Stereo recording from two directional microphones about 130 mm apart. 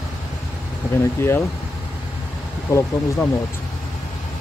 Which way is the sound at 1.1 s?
20° left (ahead or behind).